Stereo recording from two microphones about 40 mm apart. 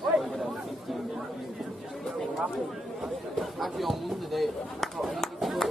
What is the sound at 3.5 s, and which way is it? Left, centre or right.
Speech, centre.